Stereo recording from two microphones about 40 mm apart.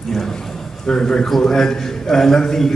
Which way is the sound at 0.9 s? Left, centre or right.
Centre.